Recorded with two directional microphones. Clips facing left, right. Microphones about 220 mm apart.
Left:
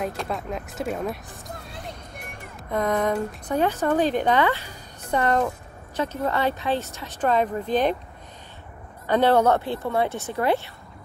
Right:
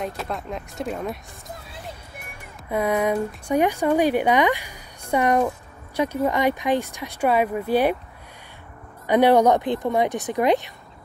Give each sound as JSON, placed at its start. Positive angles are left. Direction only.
{"t": 0.0, "sound": "speech", "side_deg": 0}
{"t": 2.7, "sound": "a woman's voice", "side_deg": -10}
{"t": 9.0, "sound": "a woman's voice", "side_deg": -15}